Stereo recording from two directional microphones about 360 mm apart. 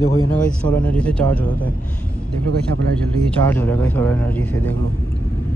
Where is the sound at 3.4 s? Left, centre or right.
Centre.